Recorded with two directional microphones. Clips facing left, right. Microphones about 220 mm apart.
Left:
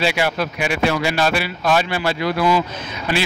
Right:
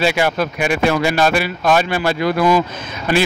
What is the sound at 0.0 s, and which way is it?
Speech, 45° right (ahead or behind).